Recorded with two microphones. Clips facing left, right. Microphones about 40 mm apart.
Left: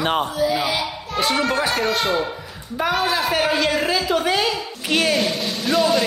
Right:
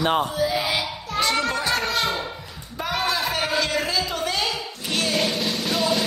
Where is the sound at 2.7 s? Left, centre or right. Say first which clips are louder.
Left 4 dB; left.